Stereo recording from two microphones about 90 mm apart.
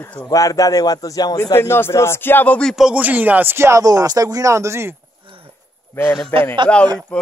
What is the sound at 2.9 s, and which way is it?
Speech, 20° right (ahead or behind).